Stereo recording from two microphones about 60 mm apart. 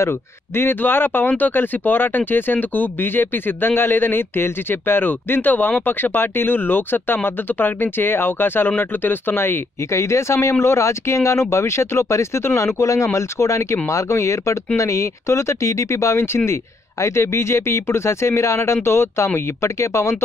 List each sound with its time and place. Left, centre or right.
0.6 s speech: left
9.8 s speech: left